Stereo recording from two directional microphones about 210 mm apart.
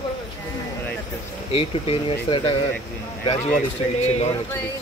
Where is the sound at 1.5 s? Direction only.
25° left (ahead or behind).